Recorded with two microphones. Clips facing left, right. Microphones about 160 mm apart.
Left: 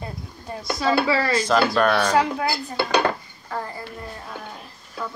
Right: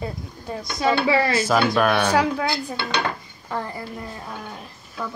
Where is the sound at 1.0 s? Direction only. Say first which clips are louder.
Right 2 dB; 20° right (ahead or behind).